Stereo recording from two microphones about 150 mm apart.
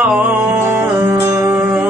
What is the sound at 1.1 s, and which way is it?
Music, 15° right (ahead or behind).